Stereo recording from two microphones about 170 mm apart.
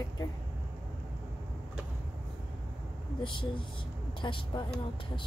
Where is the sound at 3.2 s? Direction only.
30° left (ahead or behind).